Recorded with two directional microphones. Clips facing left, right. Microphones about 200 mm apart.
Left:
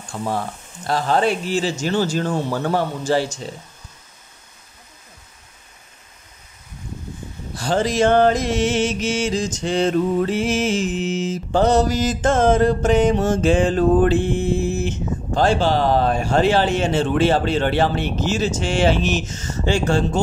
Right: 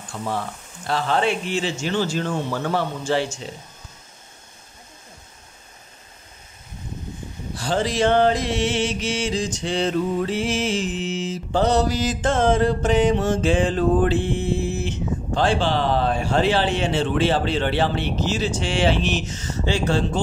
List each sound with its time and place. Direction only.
0.1 s speech: 35° left (ahead or behind)
7.6 s mantra: 45° left (ahead or behind)